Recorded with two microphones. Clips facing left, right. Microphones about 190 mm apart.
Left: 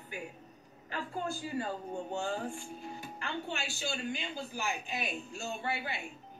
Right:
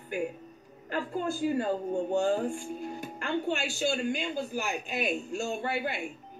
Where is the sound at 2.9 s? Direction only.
45° right (ahead or behind).